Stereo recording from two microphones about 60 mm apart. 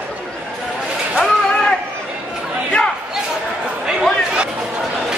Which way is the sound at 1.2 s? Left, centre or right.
Centre.